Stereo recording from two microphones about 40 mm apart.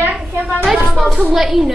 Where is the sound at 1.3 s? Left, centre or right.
Centre.